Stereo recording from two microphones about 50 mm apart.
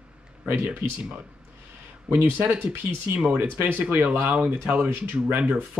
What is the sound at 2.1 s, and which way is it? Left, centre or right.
Speech, right.